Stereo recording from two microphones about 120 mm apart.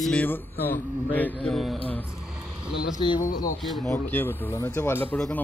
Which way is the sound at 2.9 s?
40° left (ahead or behind).